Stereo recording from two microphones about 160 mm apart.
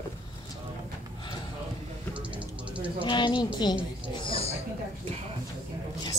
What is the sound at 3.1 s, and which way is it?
A woman's voice, 30° left (ahead or behind).